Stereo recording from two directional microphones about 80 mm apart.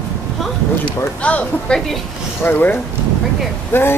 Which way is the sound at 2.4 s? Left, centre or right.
Left.